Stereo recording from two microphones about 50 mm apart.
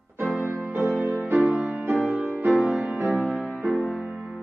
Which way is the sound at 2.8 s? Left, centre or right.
Right.